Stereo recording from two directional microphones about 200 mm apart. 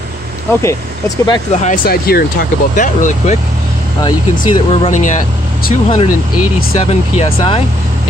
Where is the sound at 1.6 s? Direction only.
45° left (ahead or behind).